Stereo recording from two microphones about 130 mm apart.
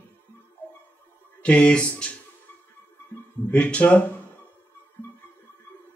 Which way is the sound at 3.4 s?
10° left (ahead or behind).